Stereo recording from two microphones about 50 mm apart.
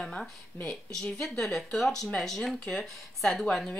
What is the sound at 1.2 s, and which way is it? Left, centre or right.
Speech, centre.